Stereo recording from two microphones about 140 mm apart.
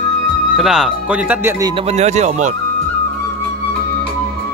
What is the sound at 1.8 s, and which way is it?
Speech, 50° right (ahead or behind).